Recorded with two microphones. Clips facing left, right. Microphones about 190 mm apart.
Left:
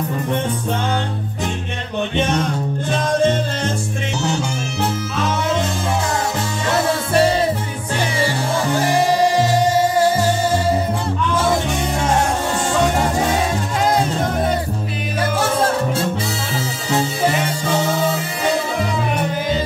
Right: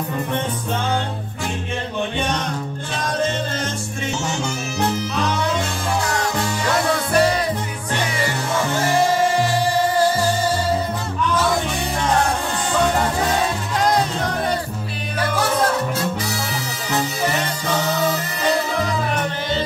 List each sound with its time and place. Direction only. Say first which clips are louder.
7.2 s music: left 2 dB; 25° left (ahead or behind)
8.8 s music: left 1 dB; 15° left (ahead or behind)
13.8 s music: left 1 dB; 5° left (ahead or behind)